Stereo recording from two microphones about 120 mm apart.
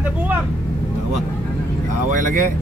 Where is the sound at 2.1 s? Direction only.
90° right.